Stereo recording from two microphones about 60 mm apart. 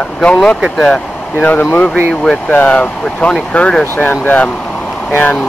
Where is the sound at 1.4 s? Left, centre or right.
Left.